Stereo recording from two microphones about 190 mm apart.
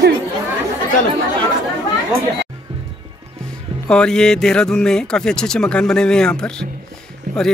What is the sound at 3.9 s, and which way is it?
Speech, 5° left (ahead or behind).